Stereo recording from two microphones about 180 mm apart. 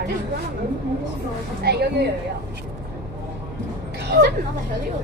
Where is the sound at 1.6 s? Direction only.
65° right (ahead or behind).